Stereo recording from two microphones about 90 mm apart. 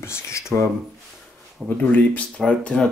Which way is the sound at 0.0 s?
30° left (ahead or behind).